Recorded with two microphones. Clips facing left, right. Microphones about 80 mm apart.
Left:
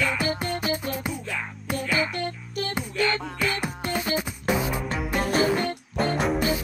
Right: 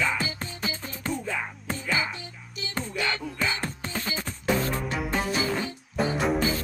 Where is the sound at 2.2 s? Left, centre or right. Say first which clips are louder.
Left 11 dB; left.